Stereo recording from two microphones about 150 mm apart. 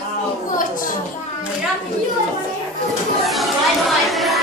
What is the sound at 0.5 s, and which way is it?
Speech, 65° left (ahead or behind).